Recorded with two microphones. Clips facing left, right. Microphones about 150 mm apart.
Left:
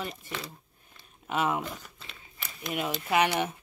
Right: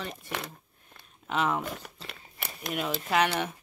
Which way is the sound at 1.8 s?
65° right (ahead or behind).